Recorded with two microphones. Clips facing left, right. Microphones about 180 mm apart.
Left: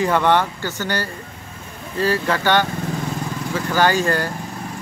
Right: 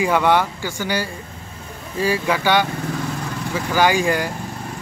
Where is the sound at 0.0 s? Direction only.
10° right (ahead or behind).